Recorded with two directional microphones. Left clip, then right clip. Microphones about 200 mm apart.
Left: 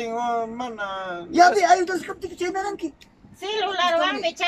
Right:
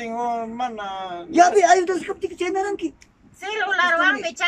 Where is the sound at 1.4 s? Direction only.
15° right (ahead or behind).